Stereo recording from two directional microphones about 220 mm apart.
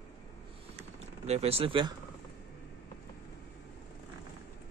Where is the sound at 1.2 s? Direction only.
30° right (ahead or behind).